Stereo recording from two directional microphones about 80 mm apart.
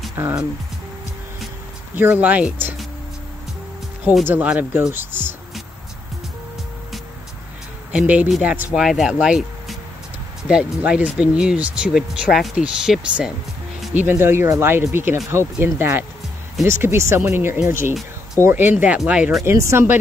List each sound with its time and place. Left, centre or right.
0.1 s speech: right
2.0 s speech: right
4.3 s speech: centre
7.9 s speech: centre
13.9 s speech: right
18.4 s speech: right
19.4 s speech: right